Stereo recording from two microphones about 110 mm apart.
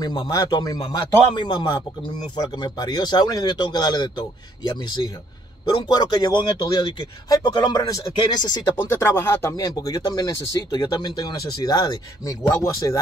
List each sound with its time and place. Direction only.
0.0 s a man's voice: 35° left (ahead or behind)
8.9 s speech: 20° left (ahead or behind)
9.5 s speech: 35° left (ahead or behind)